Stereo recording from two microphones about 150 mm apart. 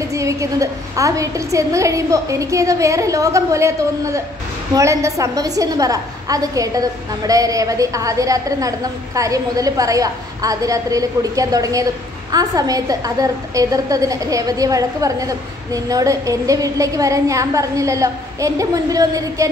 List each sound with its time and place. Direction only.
0.1 s a woman's voice: 20° right (ahead or behind)